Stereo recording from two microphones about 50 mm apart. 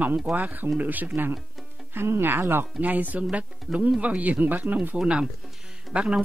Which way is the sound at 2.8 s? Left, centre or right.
Right.